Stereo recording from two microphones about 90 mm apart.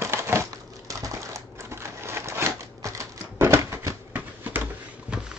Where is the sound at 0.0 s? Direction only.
30° right (ahead or behind).